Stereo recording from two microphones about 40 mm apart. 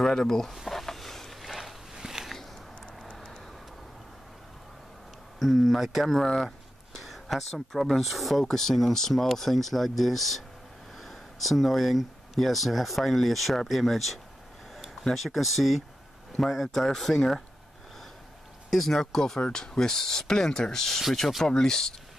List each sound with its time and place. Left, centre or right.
0.0 s speech: centre
0.6 s a sound: centre
5.4 s speech: centre
6.1 s speech: centre
7.0 s a sound: centre
8.0 s speech: centre
18.7 s speech: centre
21.5 s speech: centre